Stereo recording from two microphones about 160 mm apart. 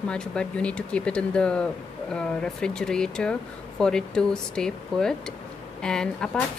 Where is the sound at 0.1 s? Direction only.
5° left (ahead or behind).